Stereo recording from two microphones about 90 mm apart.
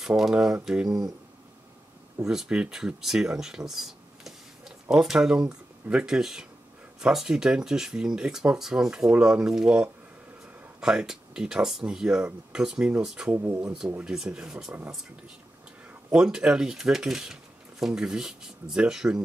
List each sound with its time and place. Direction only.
0.0 s speech: 5° right (ahead or behind)
2.2 s speech: 5° right (ahead or behind)
13.5 s speech: 35° right (ahead or behind)
13.7 s speech: 10° right (ahead or behind)
16.1 s speech: 10° right (ahead or behind)